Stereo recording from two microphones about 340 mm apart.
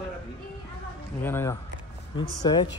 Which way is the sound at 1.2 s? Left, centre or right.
Centre.